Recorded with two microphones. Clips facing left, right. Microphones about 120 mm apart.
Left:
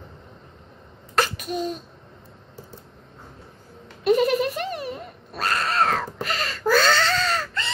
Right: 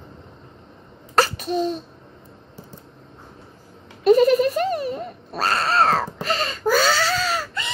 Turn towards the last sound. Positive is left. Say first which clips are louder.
# right 1 dB
turn(degrees=-10)  # may be behind; listen again after turning